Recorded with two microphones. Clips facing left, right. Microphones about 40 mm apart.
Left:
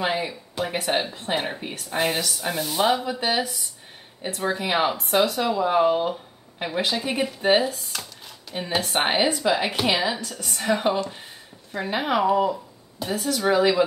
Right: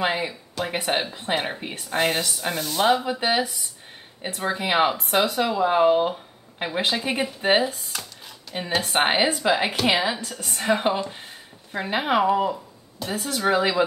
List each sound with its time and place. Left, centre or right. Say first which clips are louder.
0.0 s a woman's voice: right 1 dB; centre
2.5 s speech: even; centre
2.9 s a woman's voice: right 2 dB; centre